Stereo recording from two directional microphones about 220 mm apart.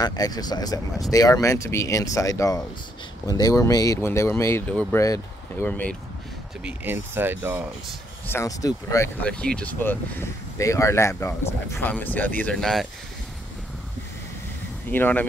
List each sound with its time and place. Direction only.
0.0 s speech: 15° left (ahead or behind)
6.6 s speech: 10° right (ahead or behind)
8.3 s speech: 15° left (ahead or behind)
14.9 s speech: 10° left (ahead or behind)